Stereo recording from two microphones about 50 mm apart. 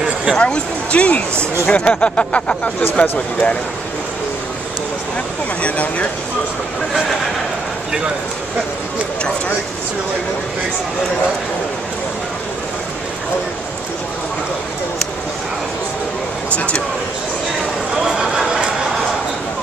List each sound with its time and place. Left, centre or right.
0.4 s speech: left
5.6 s speech: left
6.9 s speech: centre
16.4 s speech: left
18.1 s a sound: centre